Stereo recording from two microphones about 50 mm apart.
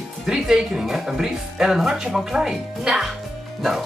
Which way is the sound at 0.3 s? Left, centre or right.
Centre.